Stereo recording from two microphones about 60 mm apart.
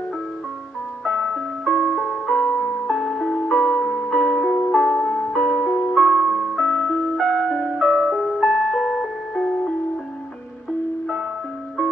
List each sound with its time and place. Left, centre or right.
1.0 s ice cream truck: centre
2.9 s music: centre